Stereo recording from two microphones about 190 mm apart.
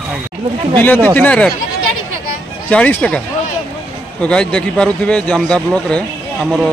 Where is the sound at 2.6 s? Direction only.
5° left (ahead or behind).